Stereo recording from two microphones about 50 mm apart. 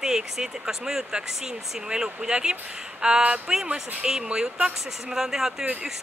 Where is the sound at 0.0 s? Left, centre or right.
Centre.